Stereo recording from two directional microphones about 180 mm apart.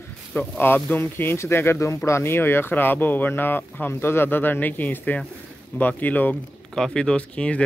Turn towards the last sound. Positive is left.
turn(degrees=5)  # may be behind; listen again after turning